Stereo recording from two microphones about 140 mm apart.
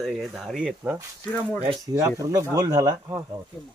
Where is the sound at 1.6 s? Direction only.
35° right (ahead or behind).